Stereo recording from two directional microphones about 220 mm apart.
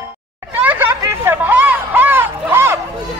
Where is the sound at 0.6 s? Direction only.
10° right (ahead or behind).